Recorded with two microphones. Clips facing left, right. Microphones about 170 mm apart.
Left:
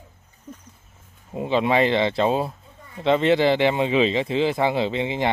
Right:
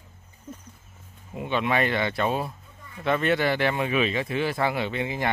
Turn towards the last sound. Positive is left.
turn(degrees=25)  # may be behind; listen again after turning